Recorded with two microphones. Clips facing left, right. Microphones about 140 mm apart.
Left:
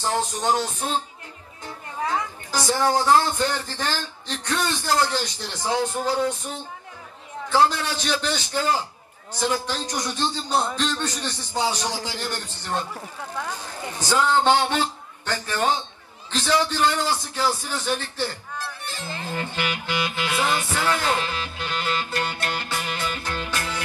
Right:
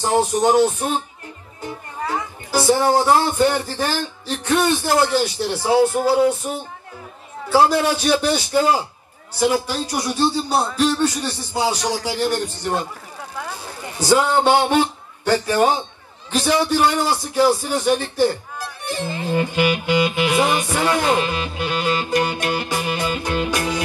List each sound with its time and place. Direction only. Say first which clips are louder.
0.0 s speech: right 7 dB; 15° right (ahead or behind)
2.0 s speech: right 1 dB; 10° right (ahead or behind)
18.9 s music: right 13 dB; 15° right (ahead or behind)